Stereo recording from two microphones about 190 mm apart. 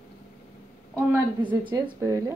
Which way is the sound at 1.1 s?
10° right (ahead or behind).